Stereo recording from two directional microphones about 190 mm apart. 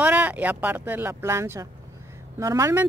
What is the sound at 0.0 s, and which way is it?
Speech, 10° right (ahead or behind).